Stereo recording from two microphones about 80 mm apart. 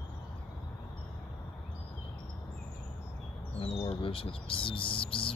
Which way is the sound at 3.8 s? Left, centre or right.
Left.